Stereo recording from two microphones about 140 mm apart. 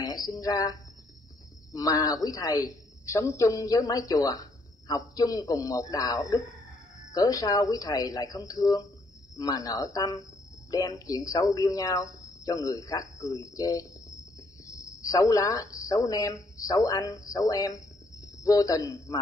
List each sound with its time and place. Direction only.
0.0 s cricket: 30° left (ahead or behind)
1.7 s a woman's voice: 25° left (ahead or behind)